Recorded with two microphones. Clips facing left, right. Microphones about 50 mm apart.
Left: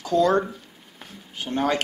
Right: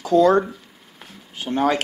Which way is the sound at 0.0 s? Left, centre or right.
Centre.